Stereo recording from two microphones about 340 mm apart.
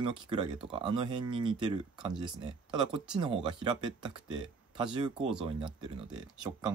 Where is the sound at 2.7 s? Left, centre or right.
Centre.